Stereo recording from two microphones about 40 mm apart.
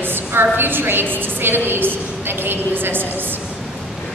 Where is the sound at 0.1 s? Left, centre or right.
Right.